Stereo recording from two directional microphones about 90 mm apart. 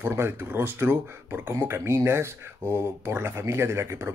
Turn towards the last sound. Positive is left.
turn(degrees=-30)  # may be behind; listen again after turning